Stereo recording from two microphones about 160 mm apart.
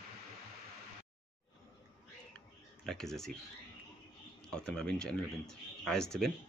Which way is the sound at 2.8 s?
5° left (ahead or behind).